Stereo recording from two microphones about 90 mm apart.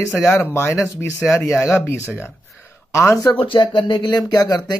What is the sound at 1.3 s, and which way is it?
Speech, 35° left (ahead or behind).